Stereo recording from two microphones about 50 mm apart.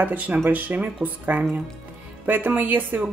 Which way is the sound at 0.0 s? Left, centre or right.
Right.